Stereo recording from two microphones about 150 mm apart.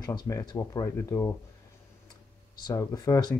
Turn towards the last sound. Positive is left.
turn(degrees=25)  # may be behind; listen again after turning